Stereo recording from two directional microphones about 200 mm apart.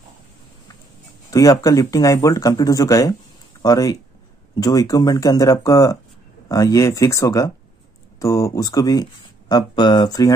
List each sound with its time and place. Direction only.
1.3 s speech: 15° left (ahead or behind)